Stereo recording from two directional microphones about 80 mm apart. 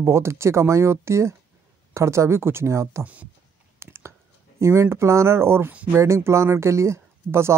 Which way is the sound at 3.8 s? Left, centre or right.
Right.